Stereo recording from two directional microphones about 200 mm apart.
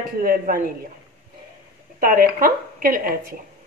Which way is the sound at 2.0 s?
45° right (ahead or behind).